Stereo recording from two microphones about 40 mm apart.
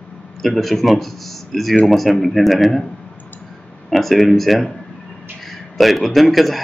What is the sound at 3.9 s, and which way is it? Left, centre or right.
A man's voice, centre.